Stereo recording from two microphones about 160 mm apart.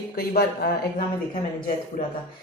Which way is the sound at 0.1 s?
75° left (ahead or behind).